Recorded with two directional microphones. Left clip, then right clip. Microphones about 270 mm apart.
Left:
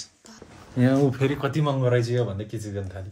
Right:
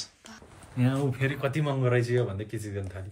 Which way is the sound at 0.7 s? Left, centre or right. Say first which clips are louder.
Left 8 dB; centre.